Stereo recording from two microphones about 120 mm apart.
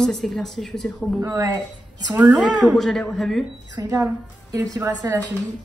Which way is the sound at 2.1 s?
15° right (ahead or behind).